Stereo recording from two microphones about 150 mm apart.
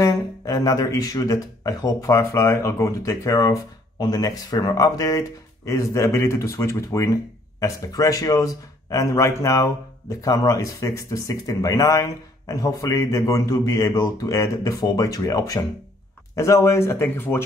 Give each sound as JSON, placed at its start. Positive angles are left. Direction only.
{"t": 0.0, "sound": "speech", "side_deg": 20}